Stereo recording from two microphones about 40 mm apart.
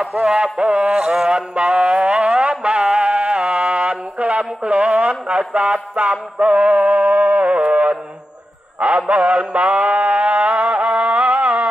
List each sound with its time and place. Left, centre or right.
0.2 s a sound: right
2.6 s music: right
8.7 s mantra: right